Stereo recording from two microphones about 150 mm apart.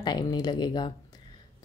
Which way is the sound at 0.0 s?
30° left (ahead or behind).